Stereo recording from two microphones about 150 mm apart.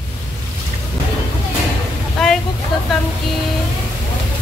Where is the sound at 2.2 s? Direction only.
5° left (ahead or behind).